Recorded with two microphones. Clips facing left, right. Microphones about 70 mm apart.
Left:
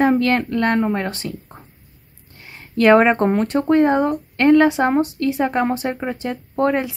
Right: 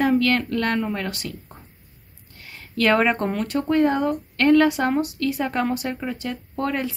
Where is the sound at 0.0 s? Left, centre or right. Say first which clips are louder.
Left 3 dB; left.